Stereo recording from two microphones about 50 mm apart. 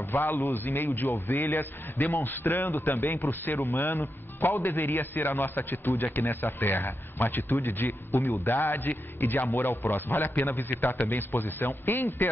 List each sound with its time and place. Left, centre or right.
0.1 s a man's voice: left
1.3 s a man's voice: left